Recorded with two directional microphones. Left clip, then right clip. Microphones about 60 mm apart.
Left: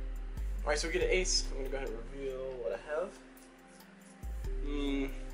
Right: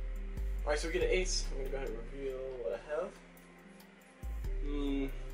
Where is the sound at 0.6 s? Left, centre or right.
Centre.